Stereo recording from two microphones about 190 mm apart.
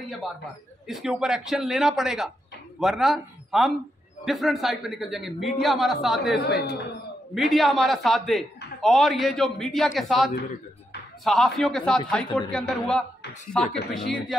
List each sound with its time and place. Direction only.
0.0 s a man's voice: centre (ahead or behind)
6.4 s a woman's voice: 60° left (ahead or behind)
7.3 s speech: centre (ahead or behind)
10.3 s a sound: 55° left (ahead or behind)
11.2 s speech: centre (ahead or behind)